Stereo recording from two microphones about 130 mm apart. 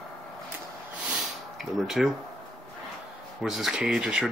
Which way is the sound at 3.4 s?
Centre (ahead or behind).